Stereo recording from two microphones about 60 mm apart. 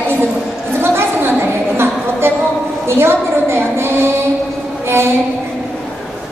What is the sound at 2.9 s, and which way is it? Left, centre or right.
Music, right.